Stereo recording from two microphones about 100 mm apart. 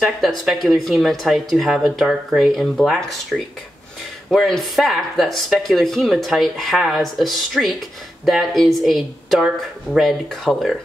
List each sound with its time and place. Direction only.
0.0 s speech: centre (ahead or behind)